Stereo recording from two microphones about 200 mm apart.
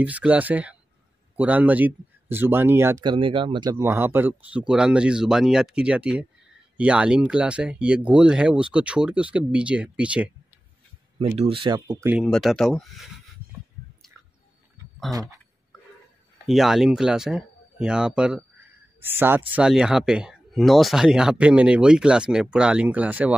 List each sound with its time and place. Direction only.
0.0 s speech: 5° right (ahead or behind)
3.1 s speech: 25° right (ahead or behind); by 10.3 s 5° right (ahead or behind)
11.1 s speech: 30° right (ahead or behind)
12.2 s speech: centre (ahead or behind)
15.1 s speech: centre (ahead or behind)
16.4 s speech: centre (ahead or behind)